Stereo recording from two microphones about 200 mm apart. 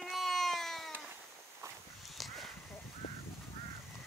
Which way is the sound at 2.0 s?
Centre (ahead or behind).